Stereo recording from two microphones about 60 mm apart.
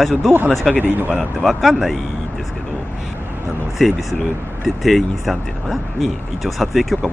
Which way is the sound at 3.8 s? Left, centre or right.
Centre.